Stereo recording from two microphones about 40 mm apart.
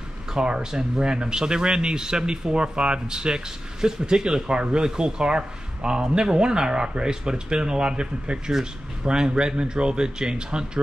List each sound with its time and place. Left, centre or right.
0.3 s speech: centre